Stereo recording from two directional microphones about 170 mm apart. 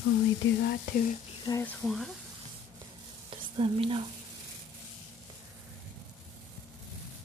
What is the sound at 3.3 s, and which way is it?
Sizzle, 30° right (ahead or behind).